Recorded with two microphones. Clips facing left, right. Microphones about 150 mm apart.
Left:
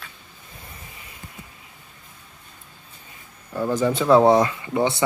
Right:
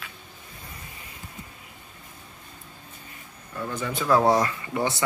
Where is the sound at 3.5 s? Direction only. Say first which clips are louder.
Left 9 dB; 35° left (ahead or behind).